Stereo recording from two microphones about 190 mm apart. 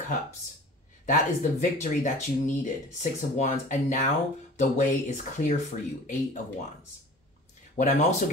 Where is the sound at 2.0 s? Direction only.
40° left (ahead or behind).